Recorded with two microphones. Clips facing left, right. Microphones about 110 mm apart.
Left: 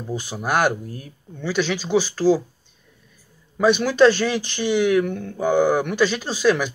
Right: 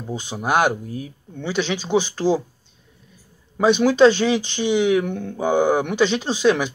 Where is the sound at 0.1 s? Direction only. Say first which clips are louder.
Right 2 dB; 20° right (ahead or behind).